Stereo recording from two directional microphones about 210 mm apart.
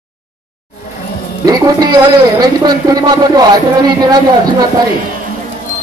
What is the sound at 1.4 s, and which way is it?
A man's voice, 20° right (ahead or behind).